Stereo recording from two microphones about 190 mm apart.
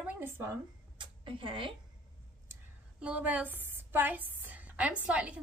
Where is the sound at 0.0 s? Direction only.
10° right (ahead or behind); by 1.7 s 25° right (ahead or behind).